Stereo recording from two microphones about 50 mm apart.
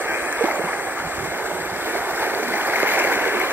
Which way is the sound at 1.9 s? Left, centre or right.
Right.